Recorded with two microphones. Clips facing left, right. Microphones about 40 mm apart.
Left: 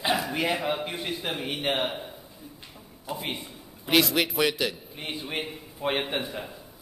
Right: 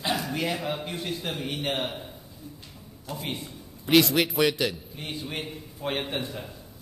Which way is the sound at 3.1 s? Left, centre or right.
Centre.